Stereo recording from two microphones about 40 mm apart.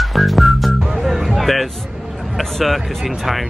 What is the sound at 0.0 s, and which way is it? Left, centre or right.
Music, centre.